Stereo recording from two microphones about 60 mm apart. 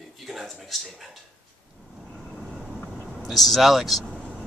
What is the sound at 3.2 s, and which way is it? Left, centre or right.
Speech, centre.